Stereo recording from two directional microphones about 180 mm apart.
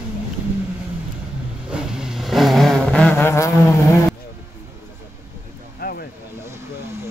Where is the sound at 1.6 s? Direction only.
5° right (ahead or behind); by 4.1 s 15° left (ahead or behind).